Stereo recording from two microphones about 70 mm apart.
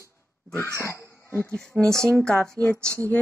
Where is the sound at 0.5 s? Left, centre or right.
Left.